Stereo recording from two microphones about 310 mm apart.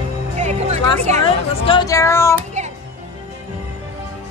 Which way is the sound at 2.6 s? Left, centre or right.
Right.